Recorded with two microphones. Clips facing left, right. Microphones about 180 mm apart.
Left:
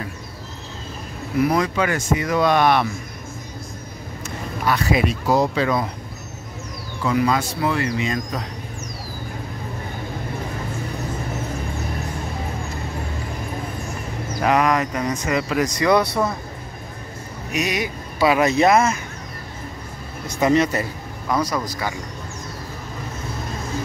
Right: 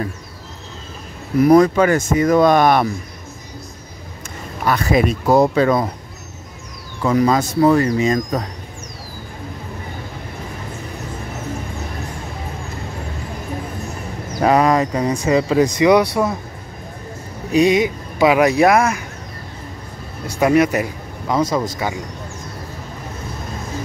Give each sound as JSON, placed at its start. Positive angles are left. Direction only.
{"t": 1.4, "sound": "speech", "side_deg": -45}
{"t": 4.6, "sound": "speech", "side_deg": -45}
{"t": 7.1, "sound": "speech", "side_deg": -40}
{"t": 14.4, "sound": "speech", "side_deg": -30}
{"t": 15.8, "sound": "speech", "side_deg": -15}
{"t": 17.5, "sound": "speech", "side_deg": -25}
{"t": 20.3, "sound": "speech", "side_deg": -10}
{"t": 21.3, "sound": "speech", "side_deg": -25}